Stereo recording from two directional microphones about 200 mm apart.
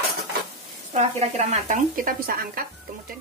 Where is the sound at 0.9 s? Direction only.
35° right (ahead or behind).